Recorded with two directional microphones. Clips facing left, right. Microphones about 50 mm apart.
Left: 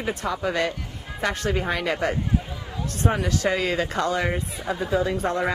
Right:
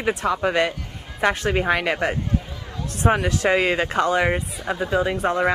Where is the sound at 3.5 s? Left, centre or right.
Right.